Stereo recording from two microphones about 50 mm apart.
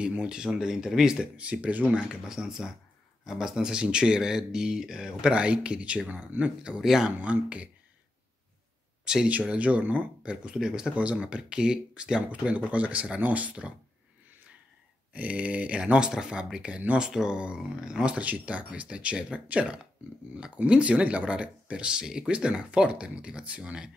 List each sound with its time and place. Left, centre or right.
0.0 s speech: right
1.2 s speech: right
2.0 s speech: centre
5.3 s speech: right
6.8 s speech: centre
7.1 s speech: right
9.0 s speech: centre
9.5 s speech: right
11.0 s speech: right
15.1 s speech: right
17.1 s speech: centre
17.4 s speech: right